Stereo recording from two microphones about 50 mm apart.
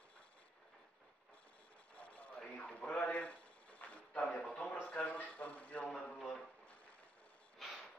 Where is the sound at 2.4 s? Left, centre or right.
Left.